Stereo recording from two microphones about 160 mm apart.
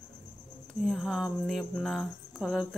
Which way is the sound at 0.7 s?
Centre (ahead or behind).